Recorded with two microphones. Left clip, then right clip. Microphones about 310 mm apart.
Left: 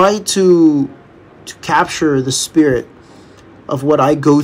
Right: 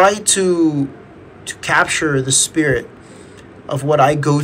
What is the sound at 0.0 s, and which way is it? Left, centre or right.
Speech, centre.